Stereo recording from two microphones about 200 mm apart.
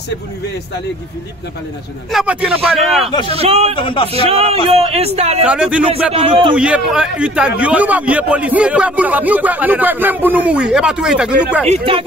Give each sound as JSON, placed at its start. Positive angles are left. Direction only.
{"t": 2.1, "sound": "speech", "side_deg": -5}
{"t": 3.3, "sound": "a man's voice", "side_deg": -30}
{"t": 3.7, "sound": "a man's voice", "side_deg": 25}
{"t": 4.3, "sound": "a man's voice", "side_deg": -30}
{"t": 5.5, "sound": "speech", "side_deg": -5}
{"t": 6.1, "sound": "a man's voice", "side_deg": -25}
{"t": 6.5, "sound": "a man's voice", "side_deg": -5}
{"t": 11.7, "sound": "a man's voice", "side_deg": -25}